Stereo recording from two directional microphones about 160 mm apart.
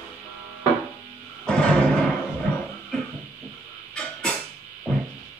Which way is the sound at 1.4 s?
5° left (ahead or behind).